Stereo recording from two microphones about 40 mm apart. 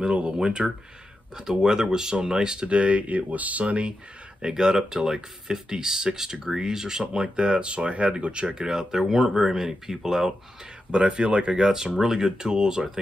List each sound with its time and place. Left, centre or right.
0.1 s speech: right
4.4 s speech: centre
10.9 s speech: right